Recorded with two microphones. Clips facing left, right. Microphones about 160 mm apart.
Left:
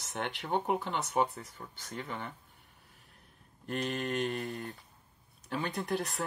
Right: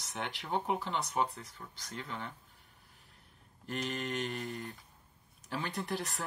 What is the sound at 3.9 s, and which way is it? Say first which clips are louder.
Mantra: left 4 dB; 35° left (ahead or behind).